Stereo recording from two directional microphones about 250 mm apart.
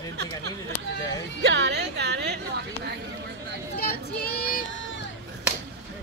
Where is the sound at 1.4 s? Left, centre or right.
Right.